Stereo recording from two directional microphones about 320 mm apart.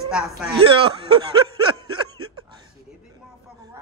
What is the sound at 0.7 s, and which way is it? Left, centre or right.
Speech, centre.